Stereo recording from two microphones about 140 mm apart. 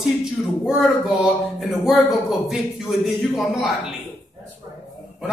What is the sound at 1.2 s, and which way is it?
Speech, centre (ahead or behind).